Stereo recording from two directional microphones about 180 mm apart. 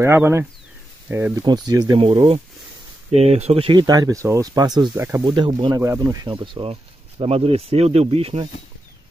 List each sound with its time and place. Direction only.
0.0 s speech: 15° right (ahead or behind)
2.0 s speech: 35° right (ahead or behind); by 5.2 s 15° right (ahead or behind)
5.2 s speech: 25° right (ahead or behind)